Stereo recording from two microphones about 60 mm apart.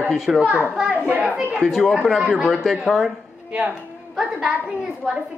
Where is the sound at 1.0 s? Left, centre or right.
Right.